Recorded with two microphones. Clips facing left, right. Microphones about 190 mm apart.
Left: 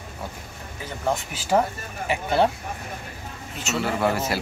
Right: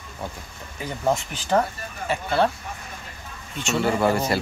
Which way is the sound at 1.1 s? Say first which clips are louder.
Left 2 dB; 10° left (ahead or behind).